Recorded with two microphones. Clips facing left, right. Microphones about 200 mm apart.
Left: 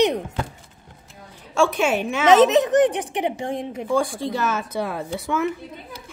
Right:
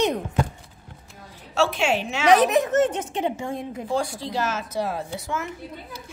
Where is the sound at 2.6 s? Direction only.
15° left (ahead or behind).